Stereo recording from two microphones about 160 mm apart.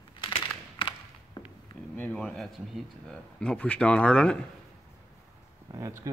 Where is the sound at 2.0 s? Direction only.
10° left (ahead or behind).